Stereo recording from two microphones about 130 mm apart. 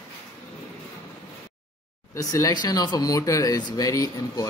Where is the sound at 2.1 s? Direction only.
25° left (ahead or behind).